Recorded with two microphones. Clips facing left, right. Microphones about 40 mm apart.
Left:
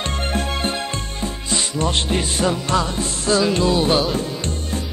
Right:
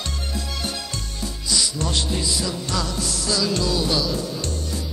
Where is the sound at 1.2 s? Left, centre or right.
Left.